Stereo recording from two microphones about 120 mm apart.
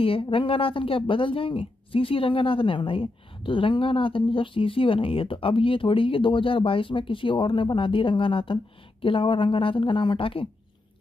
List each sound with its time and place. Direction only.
0.0 s a woman's voice: 50° left (ahead or behind)